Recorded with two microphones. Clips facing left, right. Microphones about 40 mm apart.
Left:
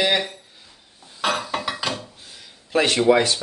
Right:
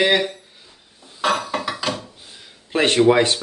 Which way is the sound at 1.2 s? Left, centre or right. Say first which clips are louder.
Right 3 dB; centre.